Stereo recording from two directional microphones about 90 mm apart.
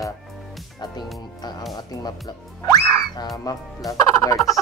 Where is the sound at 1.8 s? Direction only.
50° left (ahead or behind).